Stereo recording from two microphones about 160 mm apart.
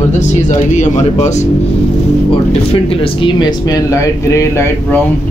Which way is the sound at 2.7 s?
35° left (ahead or behind).